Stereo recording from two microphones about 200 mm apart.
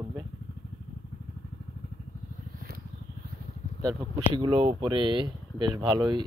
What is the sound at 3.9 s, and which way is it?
Speech, 25° right (ahead or behind).